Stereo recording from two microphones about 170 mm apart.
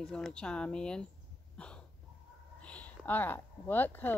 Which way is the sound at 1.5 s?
5° left (ahead or behind).